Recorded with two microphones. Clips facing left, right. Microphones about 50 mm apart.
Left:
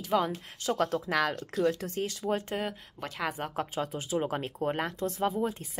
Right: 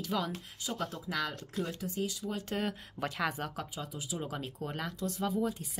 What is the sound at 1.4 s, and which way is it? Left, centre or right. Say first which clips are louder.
Speech: left 8 dB; left.